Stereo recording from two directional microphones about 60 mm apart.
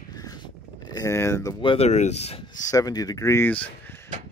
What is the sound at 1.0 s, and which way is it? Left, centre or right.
Speech, left.